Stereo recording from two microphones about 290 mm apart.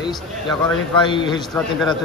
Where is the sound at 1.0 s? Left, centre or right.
Centre.